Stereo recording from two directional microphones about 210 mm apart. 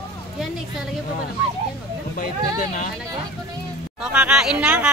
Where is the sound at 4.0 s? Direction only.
5° right (ahead or behind).